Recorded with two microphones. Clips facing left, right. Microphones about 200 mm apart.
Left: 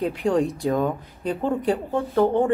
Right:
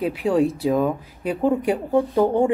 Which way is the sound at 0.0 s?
Centre (ahead or behind).